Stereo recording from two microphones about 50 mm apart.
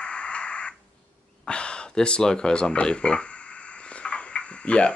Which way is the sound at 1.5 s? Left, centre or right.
Centre.